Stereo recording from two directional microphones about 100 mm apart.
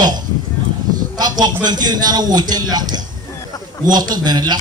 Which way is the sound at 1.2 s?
45° right (ahead or behind).